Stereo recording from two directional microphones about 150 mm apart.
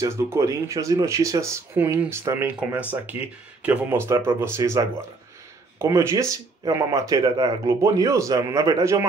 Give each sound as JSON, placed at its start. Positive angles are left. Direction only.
{"t": 0.0, "sound": "speech", "side_deg": -20}